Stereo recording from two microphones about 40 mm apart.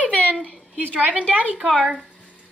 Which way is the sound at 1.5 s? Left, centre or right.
Centre.